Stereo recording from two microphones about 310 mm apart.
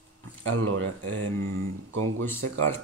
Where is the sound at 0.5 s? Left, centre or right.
Right.